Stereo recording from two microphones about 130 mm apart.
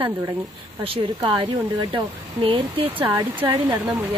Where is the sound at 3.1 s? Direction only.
15° right (ahead or behind).